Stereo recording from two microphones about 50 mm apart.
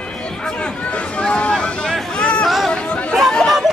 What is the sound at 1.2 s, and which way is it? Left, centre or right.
Vehicle, left.